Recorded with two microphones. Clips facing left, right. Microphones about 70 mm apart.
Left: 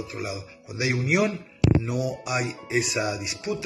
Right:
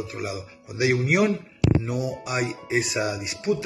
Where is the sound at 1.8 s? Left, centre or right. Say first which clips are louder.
Even; right.